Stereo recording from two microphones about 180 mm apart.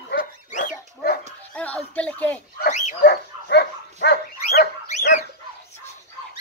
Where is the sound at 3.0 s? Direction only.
60° left (ahead or behind).